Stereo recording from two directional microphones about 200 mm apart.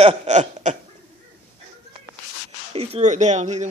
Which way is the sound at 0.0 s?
35° right (ahead or behind).